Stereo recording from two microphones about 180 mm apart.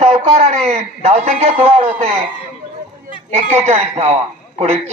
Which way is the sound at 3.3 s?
40° right (ahead or behind).